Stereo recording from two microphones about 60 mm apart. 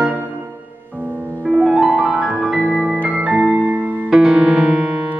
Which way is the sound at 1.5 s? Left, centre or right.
Right.